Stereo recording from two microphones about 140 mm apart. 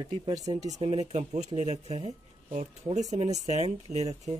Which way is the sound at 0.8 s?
50° right (ahead or behind).